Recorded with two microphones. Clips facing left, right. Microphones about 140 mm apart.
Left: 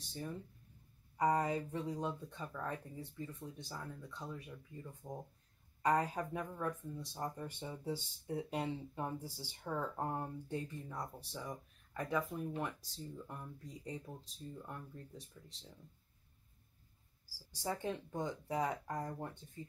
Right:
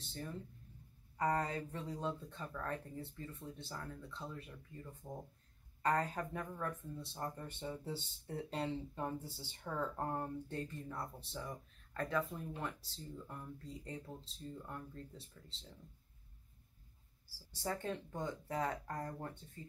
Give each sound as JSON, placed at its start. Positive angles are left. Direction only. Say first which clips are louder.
{"t": 1.1, "sound": "speech", "louder": "left 3 dB", "side_deg": 15}
{"t": 17.6, "sound": "speech", "louder": "left 1 dB", "side_deg": 15}